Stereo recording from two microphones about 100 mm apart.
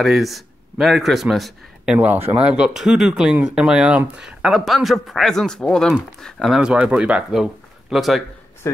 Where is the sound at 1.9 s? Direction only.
15° right (ahead or behind); by 6.5 s 5° left (ahead or behind).